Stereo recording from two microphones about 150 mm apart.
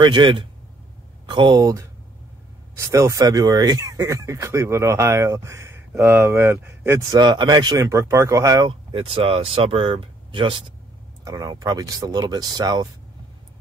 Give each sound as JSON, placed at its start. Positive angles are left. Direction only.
{"t": 0.0, "sound": "speech", "side_deg": -30}
{"t": 7.1, "sound": "speech", "side_deg": -30}
{"t": 8.9, "sound": "speech", "side_deg": -35}